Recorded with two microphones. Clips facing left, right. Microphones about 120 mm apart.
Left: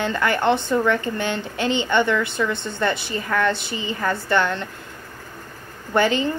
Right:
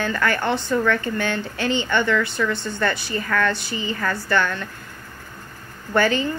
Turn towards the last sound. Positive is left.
turn(degrees=20)  # may be behind; listen again after turning